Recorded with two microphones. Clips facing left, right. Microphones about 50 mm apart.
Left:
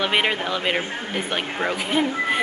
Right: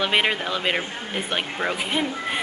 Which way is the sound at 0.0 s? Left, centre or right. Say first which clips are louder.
Even; centre.